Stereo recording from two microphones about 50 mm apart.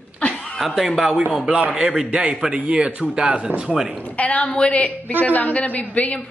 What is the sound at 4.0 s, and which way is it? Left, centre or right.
A woman's voice, left.